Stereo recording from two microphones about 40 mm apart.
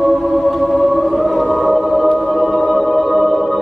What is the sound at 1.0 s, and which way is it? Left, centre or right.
Choir, centre.